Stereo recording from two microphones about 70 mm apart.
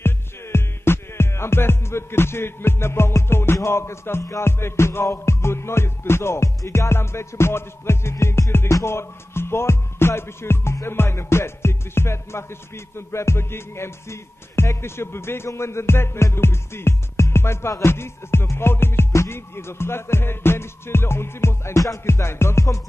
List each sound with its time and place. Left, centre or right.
0.0 s music: left